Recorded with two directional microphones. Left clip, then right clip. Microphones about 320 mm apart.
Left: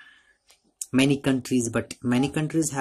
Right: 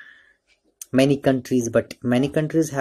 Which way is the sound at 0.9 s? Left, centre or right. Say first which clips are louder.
Right 5 dB; centre.